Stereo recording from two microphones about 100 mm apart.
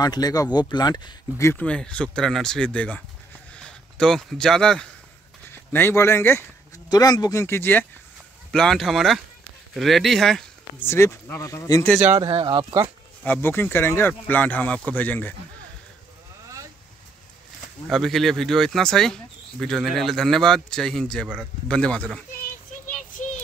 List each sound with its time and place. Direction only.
0.0 s speech: 40° left (ahead or behind)
1.6 s speech: 10° left (ahead or behind)
5.5 s speech: 20° left (ahead or behind)
6.9 s speech: 40° left (ahead or behind)
7.4 s speech: 25° left (ahead or behind)
8.5 s a man's voice: 5° left (ahead or behind)
10.8 s speech: 25° left (ahead or behind)
12.2 s speech: 60° right (ahead or behind)
13.2 s speech: 20° left (ahead or behind)
17.8 s a man's voice: centre (ahead or behind)